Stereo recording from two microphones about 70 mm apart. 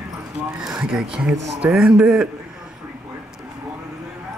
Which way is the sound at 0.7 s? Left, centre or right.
Centre.